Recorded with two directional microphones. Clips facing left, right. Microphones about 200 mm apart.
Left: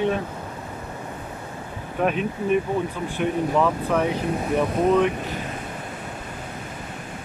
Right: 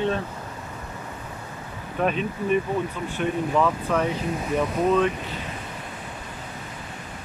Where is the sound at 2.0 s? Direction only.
10° left (ahead or behind).